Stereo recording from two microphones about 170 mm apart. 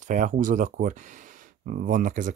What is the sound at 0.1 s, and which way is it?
Speech, 45° right (ahead or behind).